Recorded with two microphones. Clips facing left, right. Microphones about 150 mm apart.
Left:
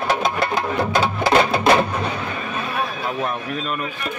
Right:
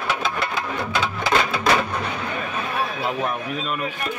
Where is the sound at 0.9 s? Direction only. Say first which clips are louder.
Left 4 dB; 40° left (ahead or behind).